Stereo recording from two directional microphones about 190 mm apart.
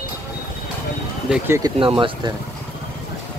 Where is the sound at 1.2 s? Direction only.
10° right (ahead or behind).